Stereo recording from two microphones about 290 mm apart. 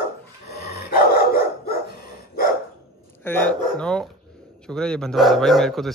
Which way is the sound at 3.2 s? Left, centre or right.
Centre.